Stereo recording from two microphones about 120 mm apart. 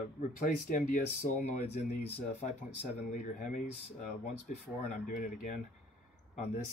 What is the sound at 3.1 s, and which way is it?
Speech, 90° left.